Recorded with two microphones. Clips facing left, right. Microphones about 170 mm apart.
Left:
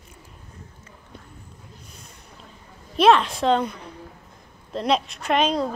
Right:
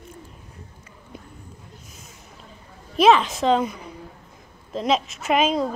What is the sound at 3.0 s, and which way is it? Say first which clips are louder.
Speech: even; centre (ahead or behind).